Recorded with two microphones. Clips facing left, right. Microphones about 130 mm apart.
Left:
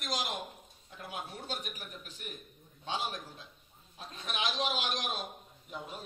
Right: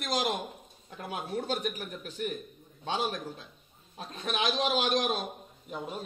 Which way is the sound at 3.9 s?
50° right (ahead or behind).